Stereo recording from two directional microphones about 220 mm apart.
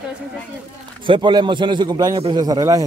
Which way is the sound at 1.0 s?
20° right (ahead or behind).